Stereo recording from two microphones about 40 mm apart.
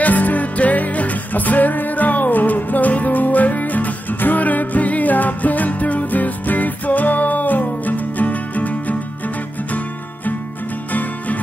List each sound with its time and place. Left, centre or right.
0.0 s music: left